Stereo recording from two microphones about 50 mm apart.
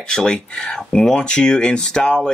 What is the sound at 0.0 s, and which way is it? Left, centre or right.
Speech, centre.